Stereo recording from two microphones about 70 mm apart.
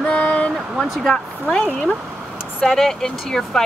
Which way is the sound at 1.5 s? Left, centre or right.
Centre.